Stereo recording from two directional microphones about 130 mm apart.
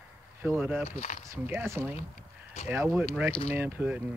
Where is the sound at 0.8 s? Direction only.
75° left (ahead or behind).